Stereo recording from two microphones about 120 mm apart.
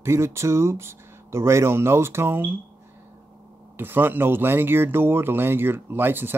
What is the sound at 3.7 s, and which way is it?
Speech, 15° right (ahead or behind).